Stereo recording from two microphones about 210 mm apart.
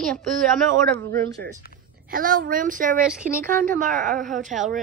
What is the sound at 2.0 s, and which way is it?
A woman's voice, 40° right (ahead or behind).